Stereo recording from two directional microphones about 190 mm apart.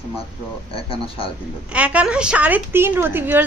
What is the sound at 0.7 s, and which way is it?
Speech, 30° left (ahead or behind).